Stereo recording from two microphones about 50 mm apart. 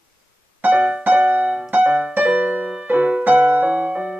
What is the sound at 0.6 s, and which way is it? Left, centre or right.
Music, right.